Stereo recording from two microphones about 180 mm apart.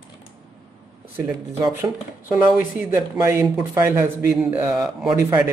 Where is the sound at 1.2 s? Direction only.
15° right (ahead or behind).